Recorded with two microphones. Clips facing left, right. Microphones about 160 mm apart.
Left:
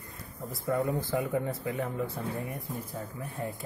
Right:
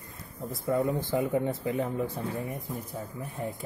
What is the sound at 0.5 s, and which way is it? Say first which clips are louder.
Speech: right 2 dB; 20° right (ahead or behind).